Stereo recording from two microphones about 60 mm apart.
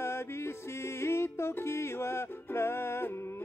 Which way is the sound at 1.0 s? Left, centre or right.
Left.